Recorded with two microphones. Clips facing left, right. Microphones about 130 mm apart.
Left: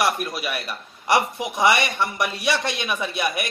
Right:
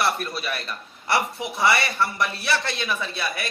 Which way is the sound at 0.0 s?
15° left (ahead or behind).